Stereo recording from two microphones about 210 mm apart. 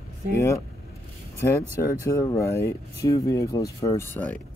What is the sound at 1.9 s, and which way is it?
Speech, 15° left (ahead or behind).